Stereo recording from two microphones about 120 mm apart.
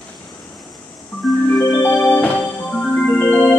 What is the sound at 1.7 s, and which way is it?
Music, 15° left (ahead or behind).